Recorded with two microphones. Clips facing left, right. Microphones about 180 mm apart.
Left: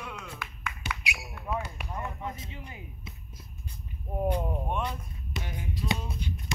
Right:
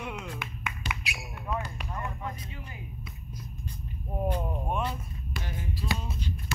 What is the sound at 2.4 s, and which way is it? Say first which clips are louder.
Speech: even; 25° left (ahead or behind).